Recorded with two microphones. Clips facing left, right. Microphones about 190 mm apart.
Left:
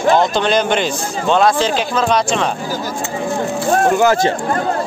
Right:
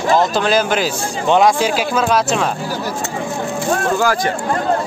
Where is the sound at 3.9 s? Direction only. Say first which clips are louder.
Left 4 dB; 25° left (ahead or behind).